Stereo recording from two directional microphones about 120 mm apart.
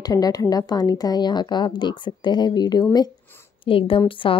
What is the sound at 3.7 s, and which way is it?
Speech, 50° left (ahead or behind).